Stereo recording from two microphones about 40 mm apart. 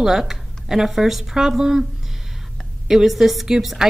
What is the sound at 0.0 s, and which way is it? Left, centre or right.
A woman's voice, centre.